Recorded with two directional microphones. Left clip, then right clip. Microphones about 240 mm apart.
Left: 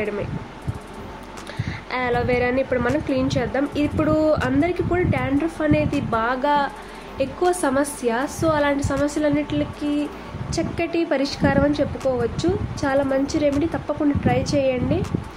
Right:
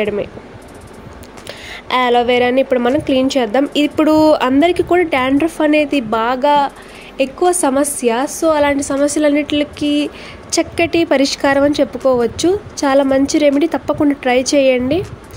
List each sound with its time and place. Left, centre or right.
1.7 s a woman's voice: right